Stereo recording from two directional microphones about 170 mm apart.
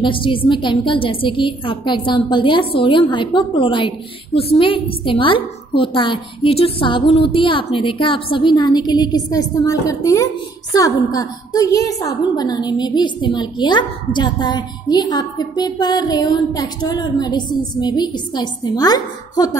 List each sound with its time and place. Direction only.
0.0 s a woman's voice: 30° left (ahead or behind)